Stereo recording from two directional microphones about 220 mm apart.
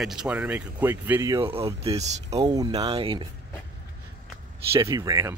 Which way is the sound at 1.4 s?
25° right (ahead or behind).